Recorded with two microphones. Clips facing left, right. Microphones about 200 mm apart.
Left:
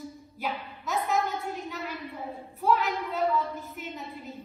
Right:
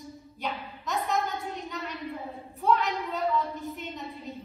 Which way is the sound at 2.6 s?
Centre (ahead or behind).